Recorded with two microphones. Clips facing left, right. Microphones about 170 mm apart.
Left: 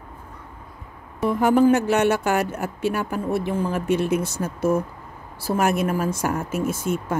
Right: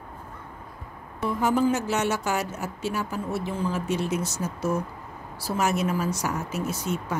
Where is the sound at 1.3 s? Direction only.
60° left (ahead or behind).